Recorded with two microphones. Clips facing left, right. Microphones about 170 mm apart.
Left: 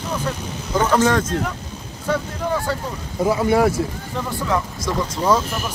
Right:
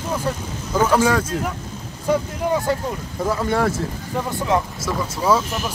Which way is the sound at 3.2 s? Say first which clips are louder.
Left 4 dB; 10° left (ahead or behind).